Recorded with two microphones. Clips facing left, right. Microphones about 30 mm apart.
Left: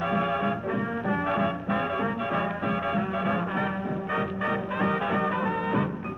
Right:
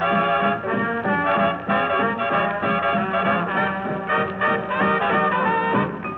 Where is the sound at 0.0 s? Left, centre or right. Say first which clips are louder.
Right 7 dB; right.